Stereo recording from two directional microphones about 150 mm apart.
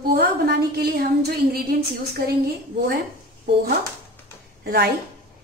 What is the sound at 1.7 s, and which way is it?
Speech, 70° right (ahead or behind).